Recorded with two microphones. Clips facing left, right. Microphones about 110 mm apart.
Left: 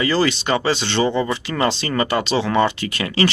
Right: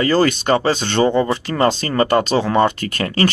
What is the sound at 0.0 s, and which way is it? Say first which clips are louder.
Speech: right 3 dB; 50° right (ahead or behind).